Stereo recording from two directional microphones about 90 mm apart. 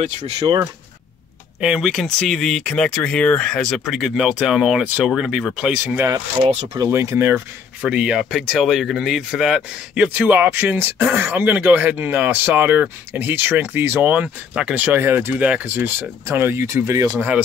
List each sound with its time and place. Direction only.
1.6 s speech: 5° right (ahead or behind)
6.7 s speech: 35° right (ahead or behind)
7.3 s speech: 10° right (ahead or behind); by 17.2 s 40° right (ahead or behind)